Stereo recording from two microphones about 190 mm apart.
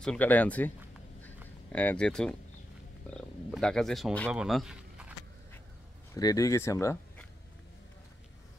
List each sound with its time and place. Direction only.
0.0 s speech: 5° left (ahead or behind)
6.1 s speech: 20° left (ahead or behind)